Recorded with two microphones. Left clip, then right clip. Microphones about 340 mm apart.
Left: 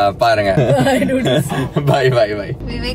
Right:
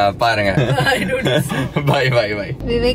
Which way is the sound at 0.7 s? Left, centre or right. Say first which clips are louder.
Left 2 dB; centre.